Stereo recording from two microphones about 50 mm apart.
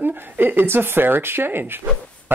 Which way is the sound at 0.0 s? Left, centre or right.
Right.